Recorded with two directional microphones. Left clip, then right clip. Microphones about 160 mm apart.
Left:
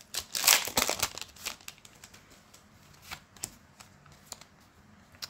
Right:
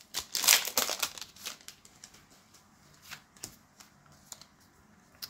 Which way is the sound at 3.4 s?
60° left (ahead or behind).